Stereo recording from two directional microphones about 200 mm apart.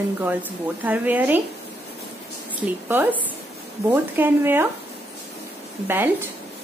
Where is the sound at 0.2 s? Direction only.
10° right (ahead or behind).